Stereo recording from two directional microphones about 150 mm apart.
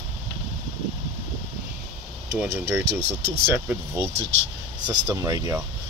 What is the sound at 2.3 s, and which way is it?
Speech, 15° right (ahead or behind).